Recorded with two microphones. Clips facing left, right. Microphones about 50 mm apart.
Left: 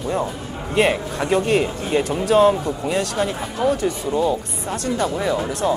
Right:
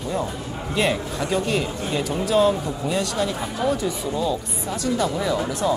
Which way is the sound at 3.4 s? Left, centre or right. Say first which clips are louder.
Left 3 dB; centre.